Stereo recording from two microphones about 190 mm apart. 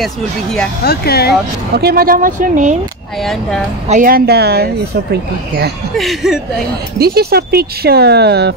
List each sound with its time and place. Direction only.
0.0 s speech: 5° left (ahead or behind)
0.8 s speech: 55° left (ahead or behind)
1.8 s speech: 55° right (ahead or behind)
3.9 s speech: 50° right (ahead or behind)
5.9 s speech: centre (ahead or behind)
7.0 s speech: 55° right (ahead or behind)